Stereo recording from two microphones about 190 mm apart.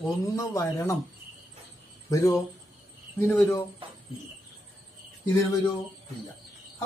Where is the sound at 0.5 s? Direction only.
15° left (ahead or behind).